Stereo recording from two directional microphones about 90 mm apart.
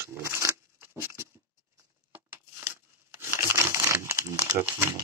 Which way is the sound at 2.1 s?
25° right (ahead or behind).